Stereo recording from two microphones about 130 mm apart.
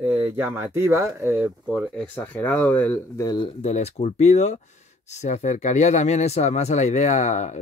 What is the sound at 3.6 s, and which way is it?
Speech, 55° left (ahead or behind).